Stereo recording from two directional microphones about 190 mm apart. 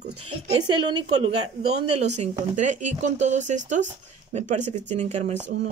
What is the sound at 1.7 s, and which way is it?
Speech, 35° right (ahead or behind).